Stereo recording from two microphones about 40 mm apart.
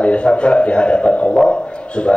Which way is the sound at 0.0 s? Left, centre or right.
Left.